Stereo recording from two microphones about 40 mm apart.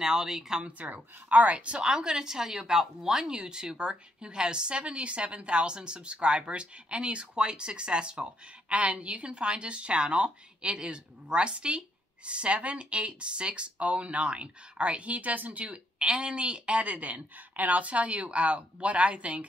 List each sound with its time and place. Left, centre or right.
0.0 s speech: centre
0.7 s speech: right
1.8 s speech: centre; by 15.7 s right
15.7 s speech: right